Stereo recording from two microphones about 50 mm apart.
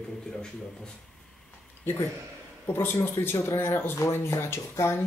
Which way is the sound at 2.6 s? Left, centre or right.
Left.